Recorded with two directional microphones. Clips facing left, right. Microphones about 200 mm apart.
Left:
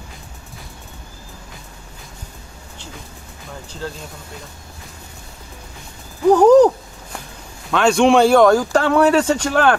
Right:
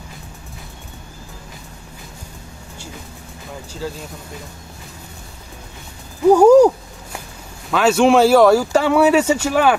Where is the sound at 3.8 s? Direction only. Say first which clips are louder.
Right 2 dB; 10° right (ahead or behind).